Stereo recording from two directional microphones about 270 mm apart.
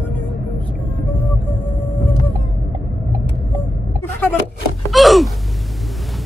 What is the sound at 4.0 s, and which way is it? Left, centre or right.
Vehicle, centre.